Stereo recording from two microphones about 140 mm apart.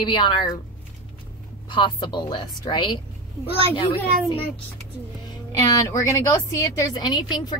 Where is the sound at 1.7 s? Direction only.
35° left (ahead or behind).